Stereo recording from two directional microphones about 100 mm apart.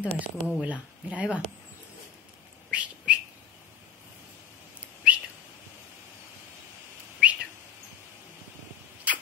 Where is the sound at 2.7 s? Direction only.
15° right (ahead or behind).